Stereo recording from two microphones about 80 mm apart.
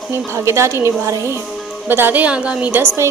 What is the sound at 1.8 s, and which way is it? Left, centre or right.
Speech, right.